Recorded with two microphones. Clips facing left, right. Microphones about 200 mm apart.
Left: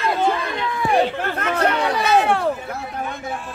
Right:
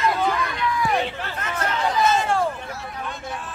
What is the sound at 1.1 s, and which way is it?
Speech, 55° left (ahead or behind).